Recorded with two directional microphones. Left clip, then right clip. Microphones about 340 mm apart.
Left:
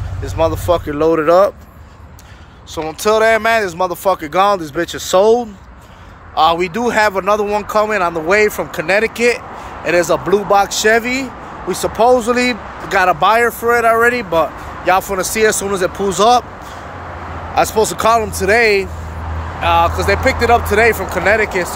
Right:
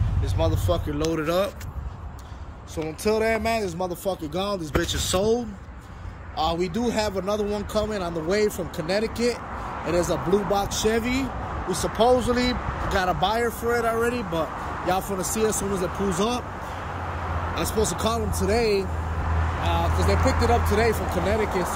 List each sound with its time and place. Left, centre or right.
0.2 s speech: centre
3.1 s speech: left
3.3 s speech: centre
6.5 s speech: centre
17.6 s speech: centre
20.2 s speech: left
20.7 s speech: centre